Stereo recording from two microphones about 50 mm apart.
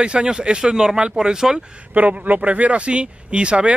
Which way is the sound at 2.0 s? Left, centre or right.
Right.